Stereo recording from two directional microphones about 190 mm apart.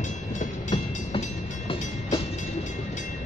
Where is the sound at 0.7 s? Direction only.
30° left (ahead or behind).